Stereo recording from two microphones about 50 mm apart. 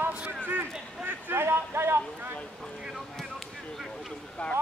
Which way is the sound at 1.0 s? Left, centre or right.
Right.